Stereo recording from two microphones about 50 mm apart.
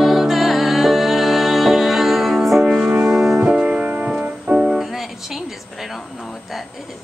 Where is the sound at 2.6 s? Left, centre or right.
Centre.